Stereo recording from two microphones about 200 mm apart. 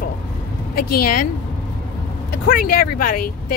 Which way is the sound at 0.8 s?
50° left (ahead or behind).